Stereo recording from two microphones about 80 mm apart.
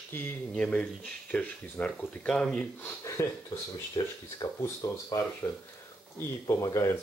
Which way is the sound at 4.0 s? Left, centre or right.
Left.